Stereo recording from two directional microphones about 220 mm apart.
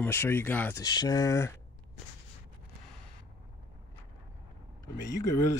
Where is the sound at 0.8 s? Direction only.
20° left (ahead or behind).